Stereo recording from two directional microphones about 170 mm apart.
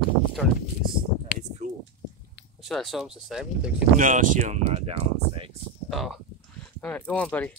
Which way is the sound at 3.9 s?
50° right (ahead or behind).